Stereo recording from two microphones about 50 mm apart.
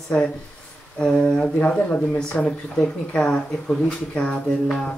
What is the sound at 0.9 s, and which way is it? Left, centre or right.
Speech, left.